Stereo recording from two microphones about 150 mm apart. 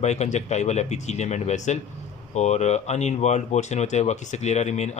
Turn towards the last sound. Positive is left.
turn(degrees=50)  # may be behind; listen again after turning